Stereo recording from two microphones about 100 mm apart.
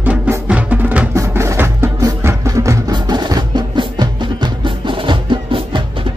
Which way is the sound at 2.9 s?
45° right (ahead or behind).